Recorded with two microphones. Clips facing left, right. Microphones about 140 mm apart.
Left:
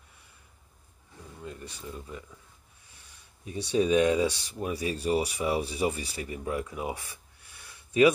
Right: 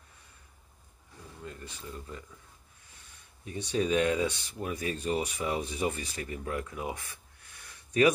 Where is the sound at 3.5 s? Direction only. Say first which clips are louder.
Left 4 dB; 10° left (ahead or behind).